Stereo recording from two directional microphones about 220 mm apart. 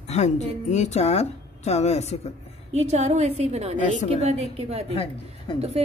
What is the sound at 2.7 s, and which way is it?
A woman's voice, 30° right (ahead or behind).